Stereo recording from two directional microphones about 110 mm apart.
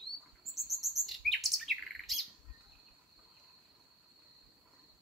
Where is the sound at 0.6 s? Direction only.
Centre (ahead or behind).